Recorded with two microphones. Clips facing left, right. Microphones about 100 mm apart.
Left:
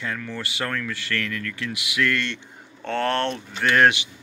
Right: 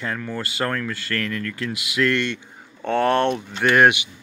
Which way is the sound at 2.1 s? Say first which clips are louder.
Right 4 dB; 15° right (ahead or behind).